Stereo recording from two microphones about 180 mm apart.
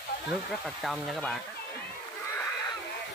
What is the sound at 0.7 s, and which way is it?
Speech, centre (ahead or behind).